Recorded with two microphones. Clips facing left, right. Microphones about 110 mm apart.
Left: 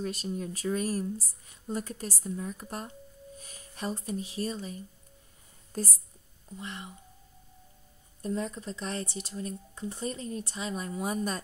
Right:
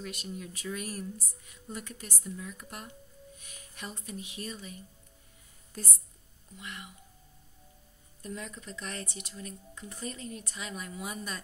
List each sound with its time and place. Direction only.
0.0 s speech: 35° left (ahead or behind)
8.2 s speech: 35° left (ahead or behind)